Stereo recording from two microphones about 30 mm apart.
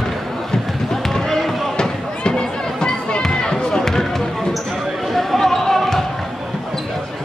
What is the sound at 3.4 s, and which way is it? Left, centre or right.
Run, left.